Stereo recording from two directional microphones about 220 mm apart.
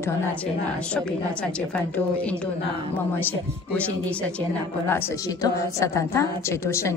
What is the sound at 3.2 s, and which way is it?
Speech, 10° left (ahead or behind).